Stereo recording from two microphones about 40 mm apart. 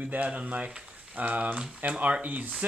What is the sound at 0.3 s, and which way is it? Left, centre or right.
Speech, right.